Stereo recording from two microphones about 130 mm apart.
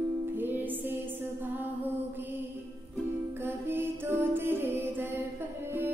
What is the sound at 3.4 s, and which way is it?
Music, 15° right (ahead or behind).